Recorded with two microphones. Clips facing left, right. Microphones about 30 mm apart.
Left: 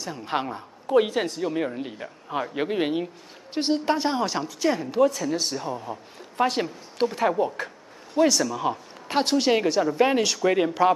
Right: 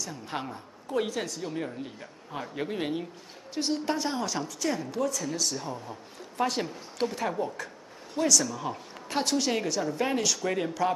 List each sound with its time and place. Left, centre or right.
0.0 s a woman's voice: left
5.6 s a woman's voice: centre